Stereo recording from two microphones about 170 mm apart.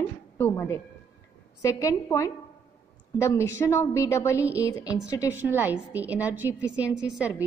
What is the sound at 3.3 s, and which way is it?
A woman's voice, 15° left (ahead or behind).